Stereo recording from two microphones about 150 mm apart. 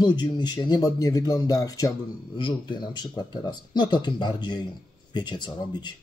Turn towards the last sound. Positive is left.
turn(degrees=30)  # may be behind; listen again after turning